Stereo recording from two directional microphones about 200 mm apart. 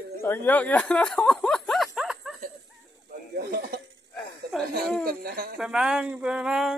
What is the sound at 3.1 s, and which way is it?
Snake, 50° right (ahead or behind).